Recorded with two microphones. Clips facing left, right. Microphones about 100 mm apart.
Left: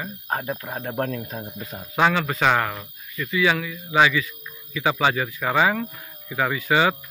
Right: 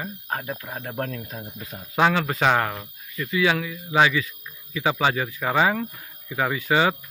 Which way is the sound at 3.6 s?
15° right (ahead or behind).